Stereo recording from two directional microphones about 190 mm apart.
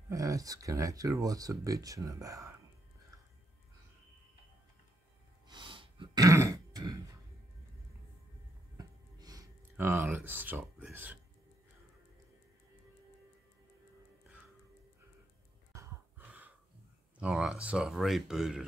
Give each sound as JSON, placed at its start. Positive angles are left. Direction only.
{"t": 0.1, "sound": "speech", "side_deg": -20}
{"t": 5.5, "sound": "throat clearing", "side_deg": -25}
{"t": 8.7, "sound": "a sound", "side_deg": -20}
{"t": 15.7, "sound": "gasp", "side_deg": -15}
{"t": 17.2, "sound": "speech", "side_deg": -5}